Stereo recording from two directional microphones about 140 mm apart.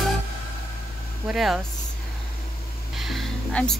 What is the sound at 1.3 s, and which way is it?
Music, centre (ahead or behind).